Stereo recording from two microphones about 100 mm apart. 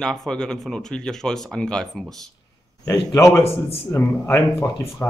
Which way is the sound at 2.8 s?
30° left (ahead or behind).